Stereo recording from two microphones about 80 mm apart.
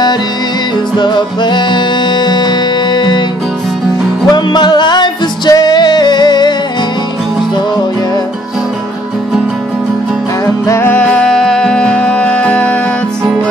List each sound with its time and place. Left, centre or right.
0.9 s music: left
4.4 s music: left
5.5 s music: left
10.4 s music: left
10.9 s music: centre